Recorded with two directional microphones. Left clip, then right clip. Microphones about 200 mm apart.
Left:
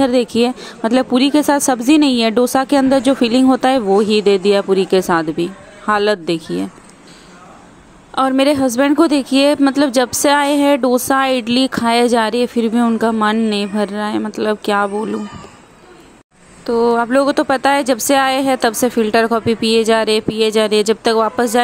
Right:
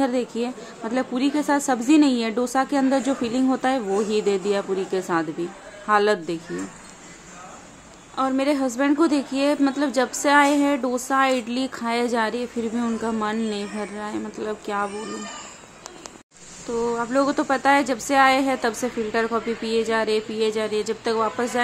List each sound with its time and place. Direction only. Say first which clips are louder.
0.0 s a woman's voice: left 10 dB; 50° left (ahead or behind)
8.1 s a woman's voice: left 9 dB; 45° left (ahead or behind)
16.6 s a woman's voice: left 11 dB; 40° left (ahead or behind)